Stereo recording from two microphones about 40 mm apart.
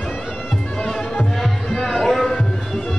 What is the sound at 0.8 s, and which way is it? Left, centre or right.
Music, centre.